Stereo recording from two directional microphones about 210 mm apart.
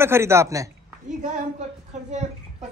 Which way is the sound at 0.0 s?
10° right (ahead or behind).